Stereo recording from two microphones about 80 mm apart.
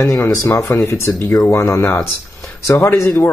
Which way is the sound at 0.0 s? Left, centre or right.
Left.